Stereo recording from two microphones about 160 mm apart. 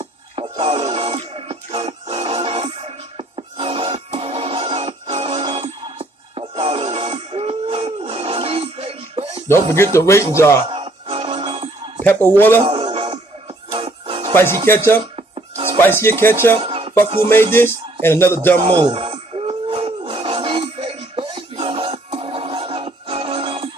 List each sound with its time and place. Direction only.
0.0 s music: 35° right (ahead or behind)
9.9 s speech: 15° left (ahead or behind)
10.7 s music: 35° right (ahead or behind)
12.0 s speech: 10° left (ahead or behind)
12.6 s music: 35° right (ahead or behind)
14.7 s speech: 15° left (ahead or behind)
16.5 s music: 35° right (ahead or behind)
17.3 s speech: 15° left (ahead or behind)
18.7 s a sound: 35° right (ahead or behind)